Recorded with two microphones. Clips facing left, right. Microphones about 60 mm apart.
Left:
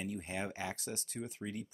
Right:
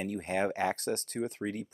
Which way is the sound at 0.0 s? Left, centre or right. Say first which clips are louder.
Right 8 dB; right.